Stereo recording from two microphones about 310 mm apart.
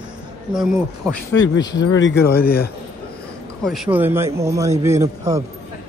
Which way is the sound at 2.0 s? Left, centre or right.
Left.